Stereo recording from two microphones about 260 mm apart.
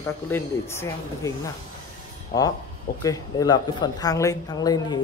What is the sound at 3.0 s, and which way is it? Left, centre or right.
A woman's voice, centre.